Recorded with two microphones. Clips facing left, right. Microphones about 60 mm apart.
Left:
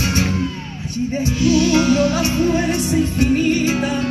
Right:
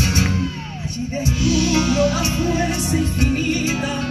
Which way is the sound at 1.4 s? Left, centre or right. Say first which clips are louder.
Left 4 dB; left.